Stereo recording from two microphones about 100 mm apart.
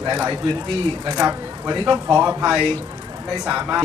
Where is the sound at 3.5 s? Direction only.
20° right (ahead or behind).